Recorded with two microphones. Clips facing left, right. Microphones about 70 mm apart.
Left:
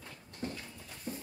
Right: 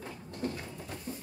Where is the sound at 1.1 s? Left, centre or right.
Left.